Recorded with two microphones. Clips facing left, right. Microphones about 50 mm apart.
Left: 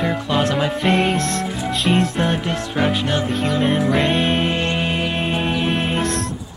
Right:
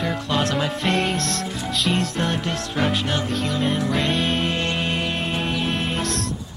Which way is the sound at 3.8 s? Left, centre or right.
Centre.